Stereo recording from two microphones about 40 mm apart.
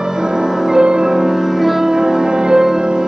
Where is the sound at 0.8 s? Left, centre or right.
Right.